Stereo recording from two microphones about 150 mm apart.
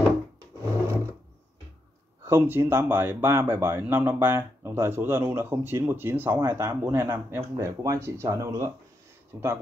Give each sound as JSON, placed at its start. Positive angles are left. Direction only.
{"t": 2.2, "sound": "speech", "side_deg": -15}